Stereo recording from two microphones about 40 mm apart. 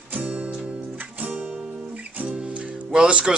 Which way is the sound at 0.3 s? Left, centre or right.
Right.